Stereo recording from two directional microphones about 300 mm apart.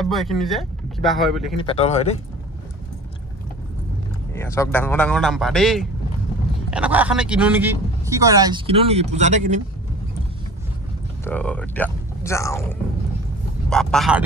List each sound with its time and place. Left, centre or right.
0.0 s speech: centre
1.6 s speech: centre
4.3 s speech: centre; by 9.4 s right
11.2 s speech: centre